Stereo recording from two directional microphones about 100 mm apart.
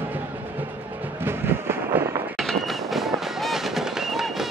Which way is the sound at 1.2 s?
20° right (ahead or behind).